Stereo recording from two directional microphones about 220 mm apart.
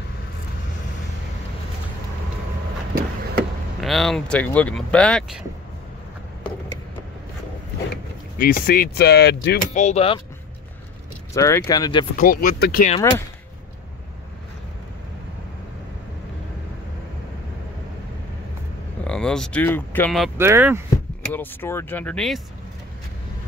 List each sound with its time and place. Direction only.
3.8 s speech: centre (ahead or behind)
8.4 s speech: 40° left (ahead or behind)
9.8 s speech: 30° left (ahead or behind)
11.3 s speech: 15° left (ahead or behind)
12.2 s speech: 40° left (ahead or behind)
19.0 s speech: 5° left (ahead or behind)
20.3 s speech: 10° right (ahead or behind)
21.3 s speech: 10° left (ahead or behind)